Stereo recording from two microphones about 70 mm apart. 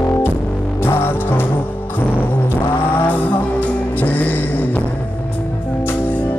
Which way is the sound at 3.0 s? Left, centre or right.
Left.